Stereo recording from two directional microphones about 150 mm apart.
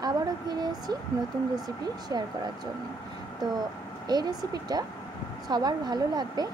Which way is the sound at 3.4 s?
25° right (ahead or behind).